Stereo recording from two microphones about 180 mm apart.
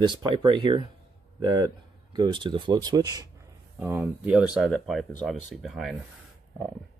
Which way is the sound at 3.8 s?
10° right (ahead or behind).